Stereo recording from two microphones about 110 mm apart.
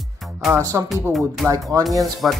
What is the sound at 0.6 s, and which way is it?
Speech, 35° right (ahead or behind).